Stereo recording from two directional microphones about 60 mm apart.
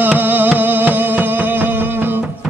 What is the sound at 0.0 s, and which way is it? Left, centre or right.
Music, right.